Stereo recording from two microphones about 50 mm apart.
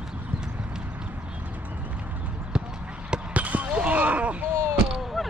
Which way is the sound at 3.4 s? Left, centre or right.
Right.